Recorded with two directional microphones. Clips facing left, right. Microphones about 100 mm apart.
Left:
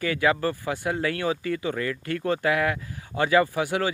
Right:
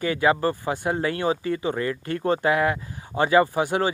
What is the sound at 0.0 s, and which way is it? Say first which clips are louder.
Speech: right 2 dB; 25° right (ahead or behind).